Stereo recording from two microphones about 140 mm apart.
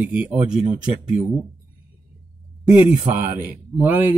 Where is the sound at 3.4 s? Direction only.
15° right (ahead or behind).